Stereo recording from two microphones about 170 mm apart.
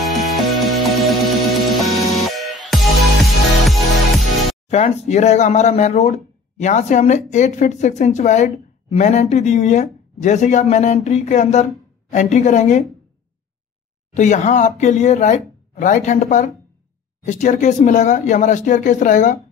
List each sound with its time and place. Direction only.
0.0 s music: centre (ahead or behind)
4.6 s speech: 40° left (ahead or behind)
14.1 s speech: 45° left (ahead or behind)